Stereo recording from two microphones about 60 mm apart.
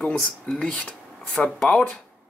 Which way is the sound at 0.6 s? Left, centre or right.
Centre.